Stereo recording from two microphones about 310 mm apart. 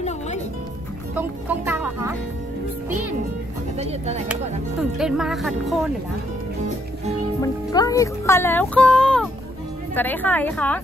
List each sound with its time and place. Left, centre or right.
1.1 s music: centre
3.7 s speech: right
4.9 s a woman's voice: centre
7.4 s a woman's voice: centre